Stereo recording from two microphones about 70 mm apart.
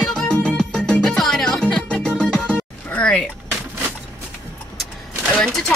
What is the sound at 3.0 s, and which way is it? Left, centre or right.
Door, centre.